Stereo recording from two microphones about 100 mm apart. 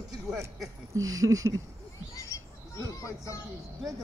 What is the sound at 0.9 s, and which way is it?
Speech, 35° right (ahead or behind).